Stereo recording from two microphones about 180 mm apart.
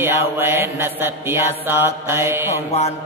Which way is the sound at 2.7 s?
35° left (ahead or behind).